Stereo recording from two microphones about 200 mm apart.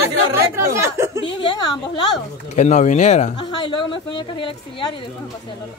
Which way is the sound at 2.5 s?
35° left (ahead or behind).